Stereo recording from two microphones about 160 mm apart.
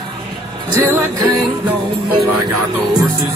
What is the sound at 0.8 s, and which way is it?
Music, 15° right (ahead or behind).